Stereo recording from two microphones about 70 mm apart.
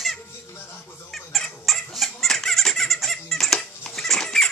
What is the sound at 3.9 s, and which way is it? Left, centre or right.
Rodents, centre.